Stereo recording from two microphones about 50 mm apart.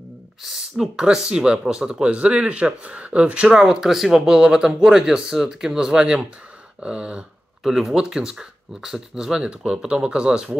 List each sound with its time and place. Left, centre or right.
0.4 s speech: centre
1.0 s speech: centre
2.0 s speech: right
6.8 s a sound: right
7.6 s speech: centre